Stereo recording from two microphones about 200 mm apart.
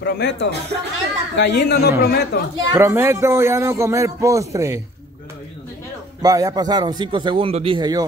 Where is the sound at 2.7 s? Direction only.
10° right (ahead or behind).